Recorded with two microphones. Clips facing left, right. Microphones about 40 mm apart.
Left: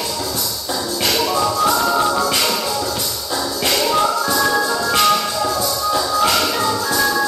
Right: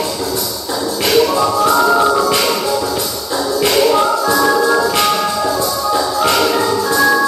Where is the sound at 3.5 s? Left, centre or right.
Centre.